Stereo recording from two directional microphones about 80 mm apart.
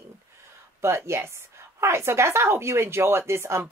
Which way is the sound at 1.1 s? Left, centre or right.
Right.